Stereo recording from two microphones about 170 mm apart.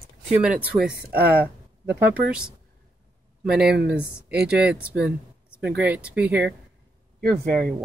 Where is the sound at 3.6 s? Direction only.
85° right.